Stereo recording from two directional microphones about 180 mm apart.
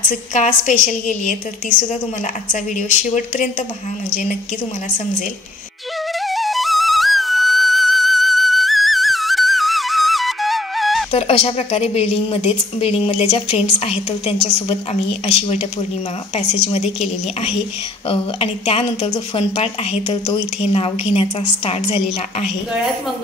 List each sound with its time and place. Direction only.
0.1 s a woman's voice: 45° left (ahead or behind)
2.5 s a woman's voice: 45° left (ahead or behind)
6.2 s flute: centre (ahead or behind)
11.1 s a woman's voice: 35° left (ahead or behind)
16.7 s a woman's voice: 35° left (ahead or behind)